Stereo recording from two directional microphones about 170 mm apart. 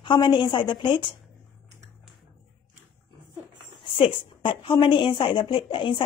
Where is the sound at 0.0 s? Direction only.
30° left (ahead or behind).